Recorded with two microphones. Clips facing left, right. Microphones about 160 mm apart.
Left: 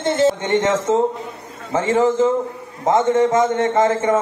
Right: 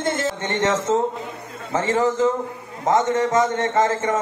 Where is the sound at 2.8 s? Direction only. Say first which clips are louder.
Left 4 dB; 25° left (ahead or behind).